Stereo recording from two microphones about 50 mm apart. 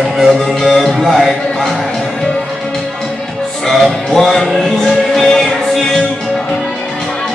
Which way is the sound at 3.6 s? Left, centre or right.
Centre.